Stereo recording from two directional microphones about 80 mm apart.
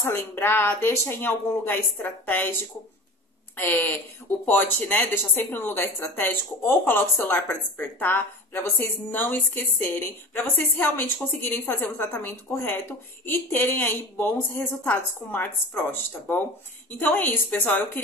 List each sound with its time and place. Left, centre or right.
0.0 s speech: left